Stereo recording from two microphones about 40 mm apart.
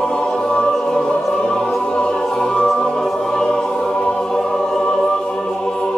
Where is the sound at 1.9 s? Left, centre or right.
Centre.